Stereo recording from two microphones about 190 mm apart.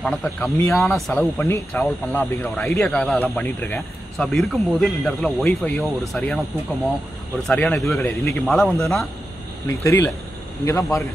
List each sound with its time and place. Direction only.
0.0 s speech: 5° left (ahead or behind)
7.4 s a man's voice: 5° left (ahead or behind)